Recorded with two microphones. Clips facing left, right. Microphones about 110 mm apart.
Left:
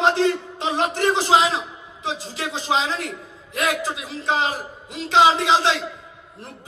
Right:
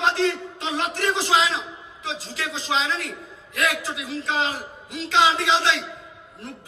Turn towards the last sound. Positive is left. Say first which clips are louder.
# left 3 dB
turn(degrees=30)  # may be behind; listen again after turning